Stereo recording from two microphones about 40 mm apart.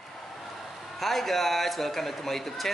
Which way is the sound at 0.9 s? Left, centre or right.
Centre.